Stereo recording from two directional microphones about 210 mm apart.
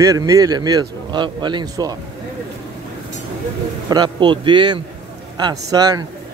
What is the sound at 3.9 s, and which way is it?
A man's voice, 20° right (ahead or behind).